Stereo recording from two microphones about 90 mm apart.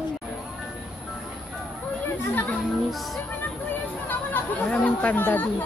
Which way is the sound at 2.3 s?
20° left (ahead or behind).